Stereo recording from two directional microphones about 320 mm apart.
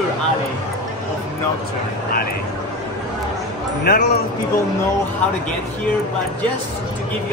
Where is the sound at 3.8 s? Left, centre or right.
Left.